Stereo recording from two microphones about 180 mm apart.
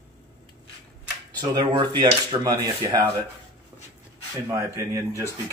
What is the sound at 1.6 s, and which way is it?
Speech, 25° right (ahead or behind).